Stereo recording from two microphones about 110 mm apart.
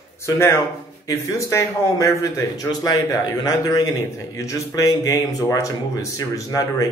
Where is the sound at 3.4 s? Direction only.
35° left (ahead or behind).